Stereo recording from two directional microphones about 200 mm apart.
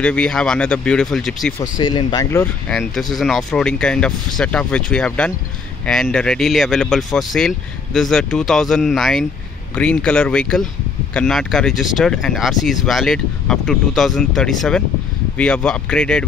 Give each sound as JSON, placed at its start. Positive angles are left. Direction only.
{"t": 0.0, "sound": "speech", "side_deg": 5}
{"t": 1.6, "sound": "speech", "side_deg": 20}
{"t": 2.7, "sound": "speech", "side_deg": 0}